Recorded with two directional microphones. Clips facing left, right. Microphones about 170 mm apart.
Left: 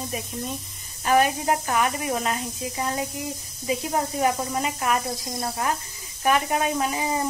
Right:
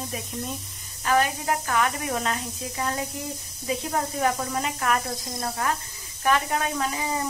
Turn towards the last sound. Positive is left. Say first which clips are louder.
# left 3 dB
turn(degrees=20)  # may be behind; listen again after turning